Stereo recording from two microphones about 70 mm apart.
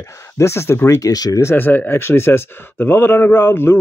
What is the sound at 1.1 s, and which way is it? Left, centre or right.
Speech, left.